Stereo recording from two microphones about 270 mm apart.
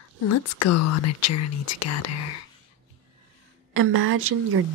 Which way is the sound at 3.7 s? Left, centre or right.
Right.